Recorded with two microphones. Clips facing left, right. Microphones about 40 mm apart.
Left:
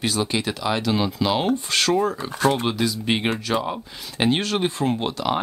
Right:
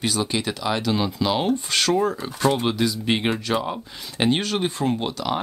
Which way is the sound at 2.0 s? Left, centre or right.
Centre.